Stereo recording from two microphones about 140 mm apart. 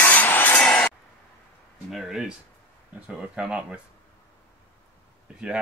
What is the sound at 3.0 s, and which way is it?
Speech, 5° right (ahead or behind).